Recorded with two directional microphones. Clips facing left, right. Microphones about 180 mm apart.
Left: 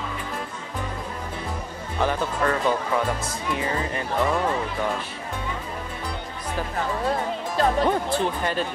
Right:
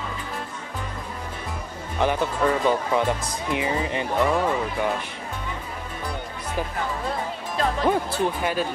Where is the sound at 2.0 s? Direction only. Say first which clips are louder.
Right 2 dB; 15° right (ahead or behind).